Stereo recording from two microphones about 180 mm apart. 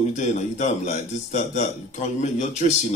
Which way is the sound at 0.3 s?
45° left (ahead or behind).